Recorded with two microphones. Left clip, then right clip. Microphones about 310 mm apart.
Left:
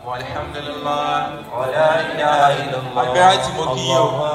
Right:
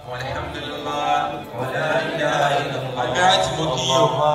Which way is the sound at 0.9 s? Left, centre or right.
Centre.